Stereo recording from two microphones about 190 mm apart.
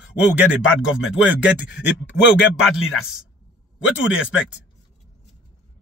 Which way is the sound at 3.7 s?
5° right (ahead or behind).